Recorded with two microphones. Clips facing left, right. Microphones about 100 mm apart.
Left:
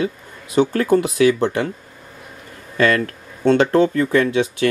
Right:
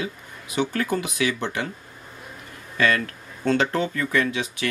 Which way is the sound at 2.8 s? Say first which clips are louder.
Left 5 dB; 40° left (ahead or behind).